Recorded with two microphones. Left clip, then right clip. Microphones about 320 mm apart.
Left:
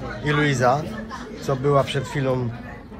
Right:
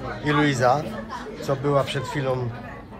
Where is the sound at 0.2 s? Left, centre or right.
Centre.